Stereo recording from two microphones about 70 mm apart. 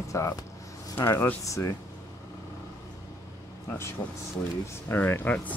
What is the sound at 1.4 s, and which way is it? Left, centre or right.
Speech, left.